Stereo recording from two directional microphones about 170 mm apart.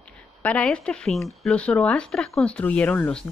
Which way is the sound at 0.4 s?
10° left (ahead or behind).